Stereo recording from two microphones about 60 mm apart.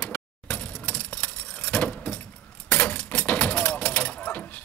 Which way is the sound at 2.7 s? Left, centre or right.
Left.